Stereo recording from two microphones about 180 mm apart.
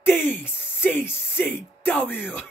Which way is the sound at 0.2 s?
10° left (ahead or behind).